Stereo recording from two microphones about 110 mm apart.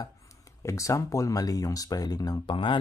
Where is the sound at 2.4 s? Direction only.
50° left (ahead or behind).